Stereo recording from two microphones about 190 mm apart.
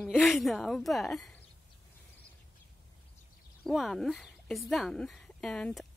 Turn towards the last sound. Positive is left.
turn(degrees=5)  # may be behind; listen again after turning